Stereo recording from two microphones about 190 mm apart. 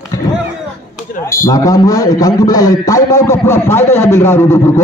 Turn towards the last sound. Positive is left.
turn(degrees=15)  # may be behind; listen again after turning